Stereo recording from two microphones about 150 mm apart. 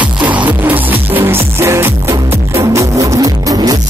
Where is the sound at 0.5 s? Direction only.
15° right (ahead or behind).